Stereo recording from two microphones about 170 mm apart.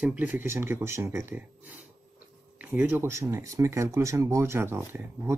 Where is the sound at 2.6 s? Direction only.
10° right (ahead or behind).